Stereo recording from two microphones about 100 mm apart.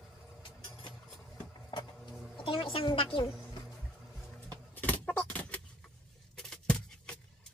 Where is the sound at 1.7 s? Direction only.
50° left (ahead or behind).